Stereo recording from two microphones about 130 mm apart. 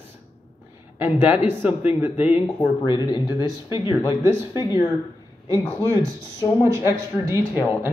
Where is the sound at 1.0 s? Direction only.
15° right (ahead or behind).